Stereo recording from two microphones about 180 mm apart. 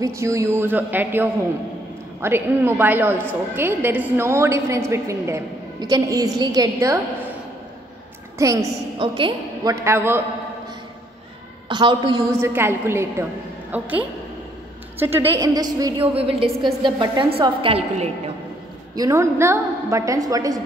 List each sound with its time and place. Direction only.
0.0 s a woman's voice: 15° right (ahead or behind)
8.4 s a woman's voice: 15° right (ahead or behind)
8.9 s a woman's voice: 30° right (ahead or behind)
9.8 s a woman's voice: 15° right (ahead or behind)
11.7 s a woman's voice: 25° right (ahead or behind)
12.3 s a woman's voice: 15° right (ahead or behind); by 18.3 s 35° right (ahead or behind)
18.9 s a woman's voice: 15° right (ahead or behind)